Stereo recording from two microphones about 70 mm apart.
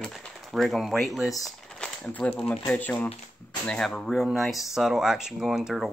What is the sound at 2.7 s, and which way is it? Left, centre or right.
Speech, left.